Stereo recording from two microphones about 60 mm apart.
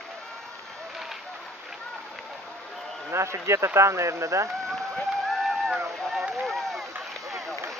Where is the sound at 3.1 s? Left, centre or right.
Right.